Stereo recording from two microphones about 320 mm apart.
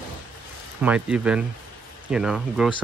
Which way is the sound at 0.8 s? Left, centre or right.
Centre.